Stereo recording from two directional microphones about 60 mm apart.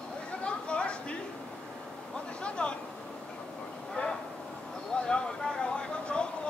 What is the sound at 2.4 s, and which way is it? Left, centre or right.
Vehicle, centre.